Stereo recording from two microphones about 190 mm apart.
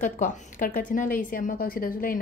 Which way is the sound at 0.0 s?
45° left (ahead or behind).